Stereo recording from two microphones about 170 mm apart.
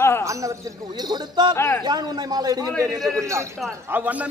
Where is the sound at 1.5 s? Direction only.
15° left (ahead or behind).